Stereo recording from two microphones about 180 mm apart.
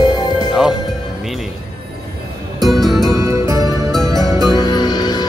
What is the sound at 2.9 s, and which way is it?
Music, 20° right (ahead or behind).